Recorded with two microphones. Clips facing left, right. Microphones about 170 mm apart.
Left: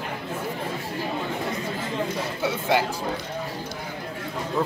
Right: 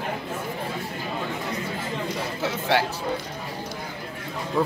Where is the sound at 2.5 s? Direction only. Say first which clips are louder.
Even; centre (ahead or behind).